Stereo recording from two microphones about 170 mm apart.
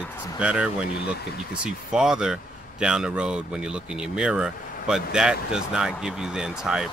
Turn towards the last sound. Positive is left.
turn(degrees=-5)  # may be behind; listen again after turning